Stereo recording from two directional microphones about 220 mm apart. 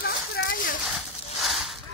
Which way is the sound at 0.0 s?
45° left (ahead or behind).